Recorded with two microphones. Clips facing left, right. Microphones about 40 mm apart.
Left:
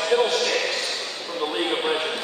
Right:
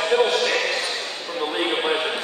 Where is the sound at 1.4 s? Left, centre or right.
Centre.